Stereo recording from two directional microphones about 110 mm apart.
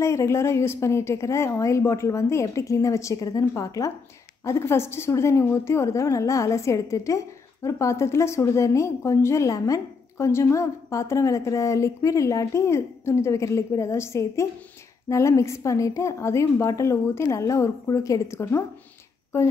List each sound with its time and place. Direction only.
0.0 s a woman's voice: 25° left (ahead or behind)